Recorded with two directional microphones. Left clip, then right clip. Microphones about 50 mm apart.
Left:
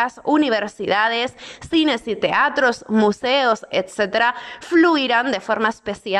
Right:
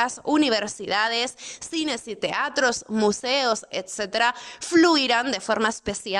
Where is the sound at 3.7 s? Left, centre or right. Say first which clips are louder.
Left 8 dB; right.